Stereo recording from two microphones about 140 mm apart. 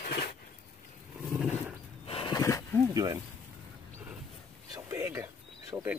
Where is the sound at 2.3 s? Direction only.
25° left (ahead or behind).